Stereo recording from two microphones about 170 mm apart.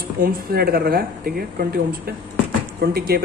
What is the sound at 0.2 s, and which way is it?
Speech, 60° right (ahead or behind).